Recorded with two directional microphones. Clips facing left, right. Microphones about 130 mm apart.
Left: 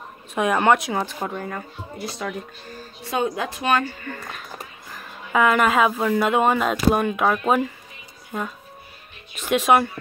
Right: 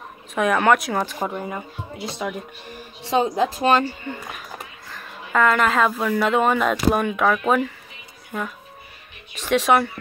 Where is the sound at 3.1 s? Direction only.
30° right (ahead or behind).